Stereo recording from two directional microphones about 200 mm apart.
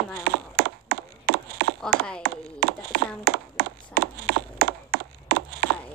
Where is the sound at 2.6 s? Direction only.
50° right (ahead or behind).